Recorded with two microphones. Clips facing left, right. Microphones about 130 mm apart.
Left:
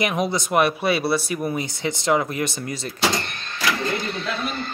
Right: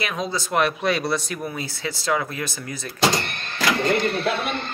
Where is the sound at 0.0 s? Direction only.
15° left (ahead or behind).